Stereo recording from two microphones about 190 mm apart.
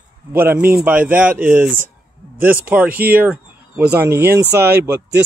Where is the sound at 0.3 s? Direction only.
10° right (ahead or behind).